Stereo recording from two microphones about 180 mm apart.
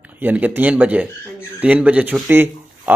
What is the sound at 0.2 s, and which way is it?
Speech, 10° right (ahead or behind).